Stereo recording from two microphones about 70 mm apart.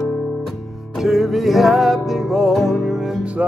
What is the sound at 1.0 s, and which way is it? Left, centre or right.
Music, centre.